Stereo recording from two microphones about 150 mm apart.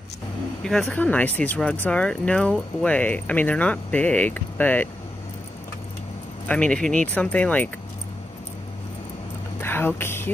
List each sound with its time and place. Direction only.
0.8 s speech: 10° left (ahead or behind)
6.4 s speech: 10° left (ahead or behind)
9.6 s a sound: 15° left (ahead or behind)